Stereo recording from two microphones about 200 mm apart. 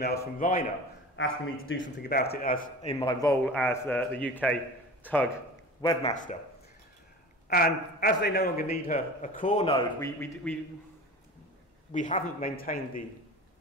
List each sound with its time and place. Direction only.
0.0 s a man's voice: 50° left (ahead or behind)
1.1 s a man's voice: 80° left; by 5.3 s 10° left (ahead or behind)
6.0 s a man's voice: 40° left (ahead or behind)
7.4 s a man's voice: 45° left (ahead or behind)
8.9 s a man's voice: 40° left (ahead or behind)
9.9 s a man's voice: 10° left (ahead or behind)
11.9 s a man's voice: 40° left (ahead or behind)